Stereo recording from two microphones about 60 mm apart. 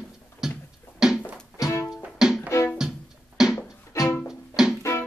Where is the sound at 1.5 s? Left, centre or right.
Left.